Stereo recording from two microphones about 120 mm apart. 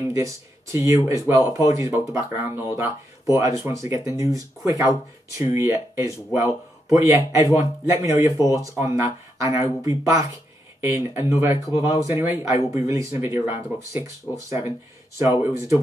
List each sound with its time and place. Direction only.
0.1 s a man's voice: 25° right (ahead or behind)